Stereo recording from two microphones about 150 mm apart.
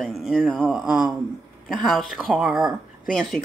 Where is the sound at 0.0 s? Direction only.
Centre (ahead or behind).